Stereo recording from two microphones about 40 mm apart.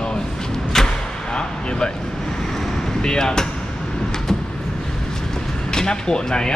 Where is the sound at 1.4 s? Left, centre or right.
Left.